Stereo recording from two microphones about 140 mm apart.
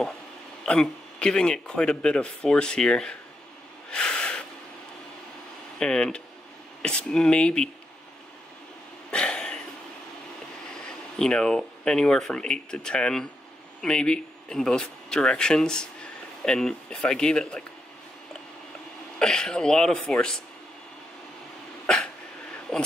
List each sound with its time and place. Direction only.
0.7 s speech: 5° left (ahead or behind)
3.9 s snort: 5° left (ahead or behind)
5.8 s speech: 5° left (ahead or behind)
9.1 s a sound: 5° left (ahead or behind)
10.7 s speech: 5° left (ahead or behind)
19.1 s a man's voice: 5° left (ahead or behind)
21.8 s dog: 5° left (ahead or behind)
22.7 s a sound: 5° left (ahead or behind)